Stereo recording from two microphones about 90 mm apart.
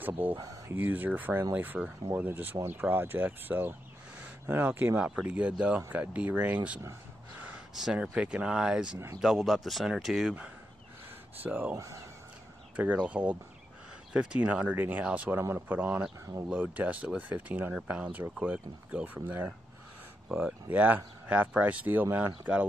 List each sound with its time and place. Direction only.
0.0 s speech: 20° right (ahead or behind)
11.4 s speech: 20° right (ahead or behind)
11.7 s speech: 35° right (ahead or behind)
12.7 s speech: 15° right (ahead or behind)